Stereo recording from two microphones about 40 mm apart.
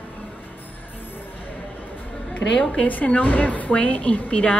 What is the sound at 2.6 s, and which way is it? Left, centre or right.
Speech, left.